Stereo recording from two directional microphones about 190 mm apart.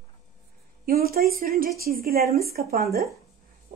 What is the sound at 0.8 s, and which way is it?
Speech, 50° right (ahead or behind).